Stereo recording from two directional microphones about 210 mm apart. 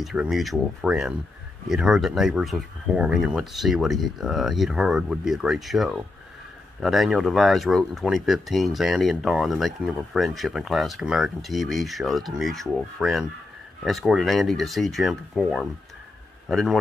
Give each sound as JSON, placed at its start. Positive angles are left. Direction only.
{"t": 0.0, "sound": "a man's voice", "side_deg": 0}